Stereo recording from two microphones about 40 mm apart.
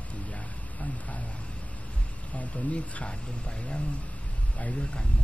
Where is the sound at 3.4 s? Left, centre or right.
Left.